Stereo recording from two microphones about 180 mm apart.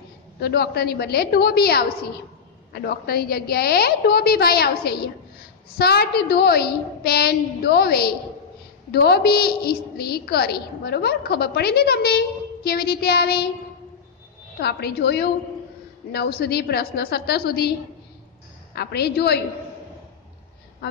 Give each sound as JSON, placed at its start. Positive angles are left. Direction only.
{"t": 0.4, "sound": "a woman's voice", "side_deg": 65}
{"t": 14.6, "sound": "a woman's voice", "side_deg": 65}
{"t": 18.8, "sound": "a woman's voice", "side_deg": 65}